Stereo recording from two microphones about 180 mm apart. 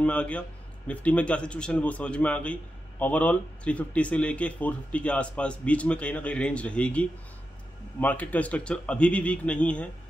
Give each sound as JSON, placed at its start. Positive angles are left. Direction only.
{"t": 0.0, "sound": "a man's voice", "side_deg": 5}